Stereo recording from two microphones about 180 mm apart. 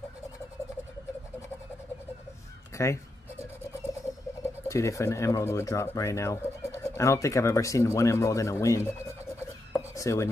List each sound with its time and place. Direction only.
2.7 s speech: 15° left (ahead or behind)
4.6 s speech: 15° left (ahead or behind)
9.7 s chopping: 15° left (ahead or behind)